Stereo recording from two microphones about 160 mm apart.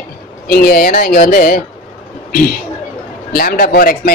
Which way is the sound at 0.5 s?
75° left (ahead or behind).